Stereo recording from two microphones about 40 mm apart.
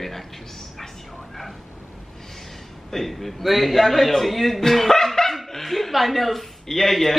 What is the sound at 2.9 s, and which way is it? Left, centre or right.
A man's voice, centre.